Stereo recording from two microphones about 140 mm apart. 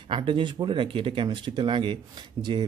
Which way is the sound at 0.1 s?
35° right (ahead or behind).